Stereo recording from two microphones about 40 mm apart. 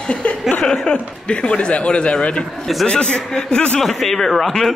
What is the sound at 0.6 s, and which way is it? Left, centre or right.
Speech, centre.